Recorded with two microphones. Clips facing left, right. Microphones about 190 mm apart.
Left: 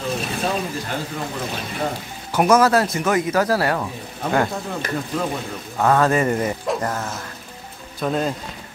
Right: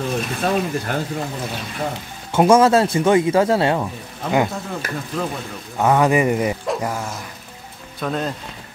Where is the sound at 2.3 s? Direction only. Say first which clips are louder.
Right 2 dB; 25° right (ahead or behind).